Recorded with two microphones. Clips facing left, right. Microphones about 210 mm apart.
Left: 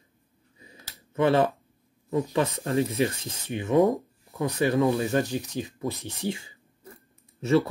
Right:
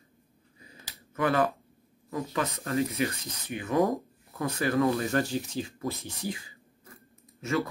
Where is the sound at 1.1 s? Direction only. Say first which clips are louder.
Left 4 dB; 25° left (ahead or behind).